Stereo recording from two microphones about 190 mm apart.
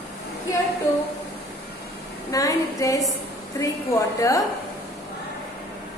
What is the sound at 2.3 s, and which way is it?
A woman's voice, 15° left (ahead or behind).